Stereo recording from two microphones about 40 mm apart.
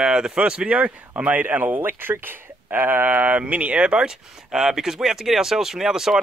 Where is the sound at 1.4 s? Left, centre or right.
Right.